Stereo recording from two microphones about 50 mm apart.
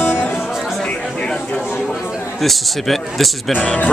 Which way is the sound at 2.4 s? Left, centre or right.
Centre.